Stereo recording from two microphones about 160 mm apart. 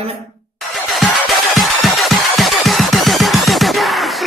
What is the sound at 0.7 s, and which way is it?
Music, centre (ahead or behind).